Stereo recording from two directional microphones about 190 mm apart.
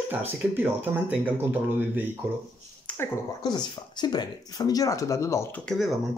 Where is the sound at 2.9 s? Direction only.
5° left (ahead or behind).